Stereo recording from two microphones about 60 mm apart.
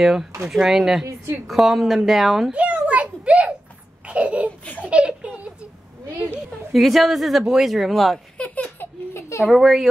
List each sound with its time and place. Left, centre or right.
0.0 s speech: centre
1.0 s a woman's voice: right
1.5 s speech: centre
2.5 s a sound: right
4.1 s babbling: right
4.5 s laughter: left
4.8 s a sound: centre
6.7 s speech: centre
8.4 s baby laughter: left
9.5 s speech: centre